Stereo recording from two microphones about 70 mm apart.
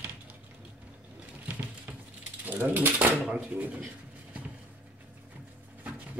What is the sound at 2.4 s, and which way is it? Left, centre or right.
Ratchet, right.